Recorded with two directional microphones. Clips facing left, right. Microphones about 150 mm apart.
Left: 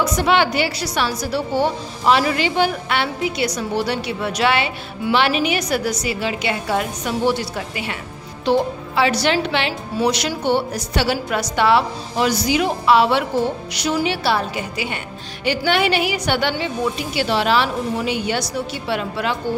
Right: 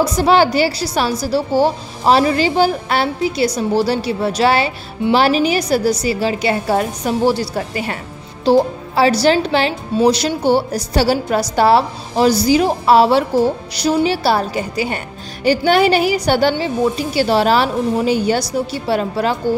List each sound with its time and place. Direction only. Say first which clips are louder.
0.0 s a woman's voice: right 4 dB; 35° right (ahead or behind)